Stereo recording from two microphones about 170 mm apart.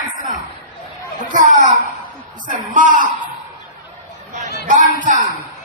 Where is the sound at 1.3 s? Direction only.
50° right (ahead or behind).